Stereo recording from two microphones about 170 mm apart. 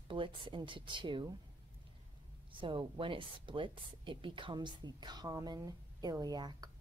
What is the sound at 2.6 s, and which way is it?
Speech, 30° right (ahead or behind).